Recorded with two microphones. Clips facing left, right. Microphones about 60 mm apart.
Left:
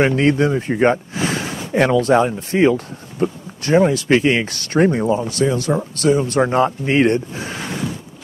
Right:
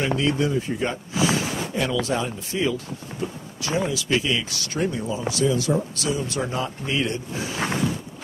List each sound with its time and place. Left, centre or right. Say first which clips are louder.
0.0 s speech: left 7 dB; left